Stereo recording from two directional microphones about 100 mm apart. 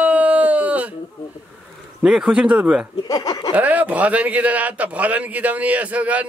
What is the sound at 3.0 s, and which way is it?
Speech, 40° left (ahead or behind).